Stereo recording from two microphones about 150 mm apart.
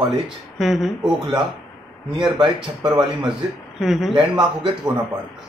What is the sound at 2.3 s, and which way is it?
Speech, 30° right (ahead or behind).